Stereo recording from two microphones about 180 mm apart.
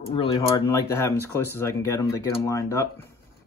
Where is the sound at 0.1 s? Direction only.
30° left (ahead or behind).